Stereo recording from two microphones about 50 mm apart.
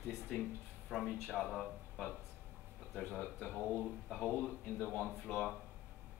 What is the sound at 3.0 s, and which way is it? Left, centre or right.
Speech, left.